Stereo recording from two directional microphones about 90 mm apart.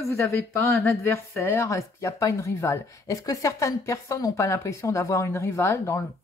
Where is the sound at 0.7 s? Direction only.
30° left (ahead or behind).